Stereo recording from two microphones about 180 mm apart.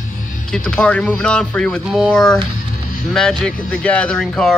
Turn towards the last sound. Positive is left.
turn(degrees=5)  # may be behind; listen again after turning